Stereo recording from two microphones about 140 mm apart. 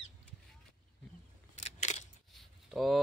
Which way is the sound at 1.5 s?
55° left (ahead or behind).